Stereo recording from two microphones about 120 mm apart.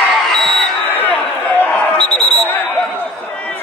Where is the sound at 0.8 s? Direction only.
15° left (ahead or behind).